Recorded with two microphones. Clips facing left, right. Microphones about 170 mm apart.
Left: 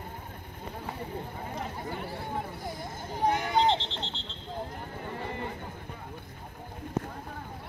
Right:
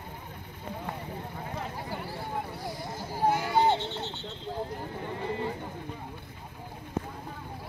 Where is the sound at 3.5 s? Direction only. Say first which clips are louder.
Right 1 dB; 20° left (ahead or behind).